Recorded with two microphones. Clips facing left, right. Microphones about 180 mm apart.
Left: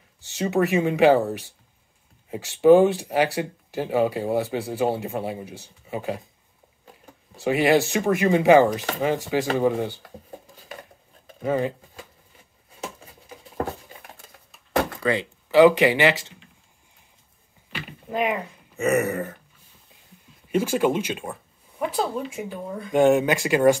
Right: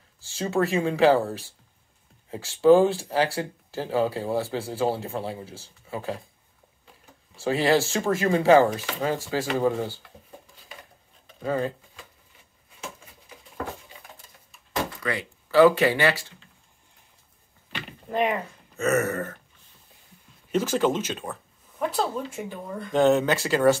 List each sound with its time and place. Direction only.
0.2 s speech: 20° left (ahead or behind)
7.3 s speech: 15° left (ahead or behind)
10.0 s dishes: 45° left (ahead or behind)
11.4 s speech: 20° left (ahead or behind)
15.0 s speech: 20° left (ahead or behind)
17.7 s a sound: 5° left (ahead or behind)
18.8 s speech: 15° left (ahead or behind)
20.5 s speech: 10° left (ahead or behind)